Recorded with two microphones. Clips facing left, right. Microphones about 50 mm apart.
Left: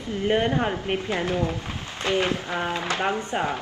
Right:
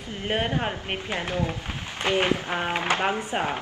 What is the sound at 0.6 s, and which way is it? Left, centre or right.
Speech, centre.